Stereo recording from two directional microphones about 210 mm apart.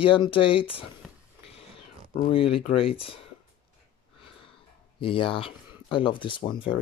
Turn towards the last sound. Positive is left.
turn(degrees=25)  # may be behind; listen again after turning